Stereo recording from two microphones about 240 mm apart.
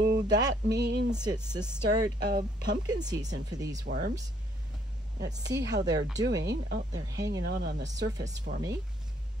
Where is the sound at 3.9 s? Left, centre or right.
Right.